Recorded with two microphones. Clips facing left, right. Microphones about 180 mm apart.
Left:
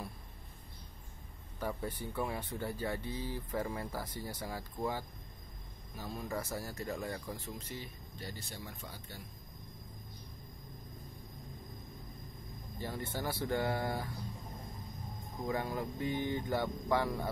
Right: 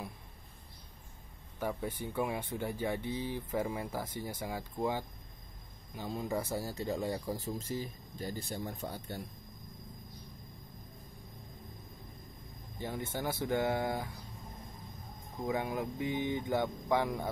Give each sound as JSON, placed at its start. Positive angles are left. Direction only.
{"t": 1.6, "sound": "speech", "side_deg": -10}
{"t": 4.0, "sound": "speech", "side_deg": -25}
{"t": 6.5, "sound": "speech", "side_deg": -30}
{"t": 7.2, "sound": "speech", "side_deg": -45}
{"t": 12.7, "sound": "speech", "side_deg": -15}
{"t": 15.4, "sound": "speech", "side_deg": -15}